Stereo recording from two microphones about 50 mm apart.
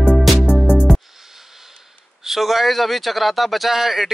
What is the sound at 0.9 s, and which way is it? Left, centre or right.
Music, centre.